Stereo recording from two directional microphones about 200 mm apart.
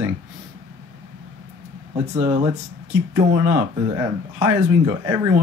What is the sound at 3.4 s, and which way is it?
Speech, 10° right (ahead or behind).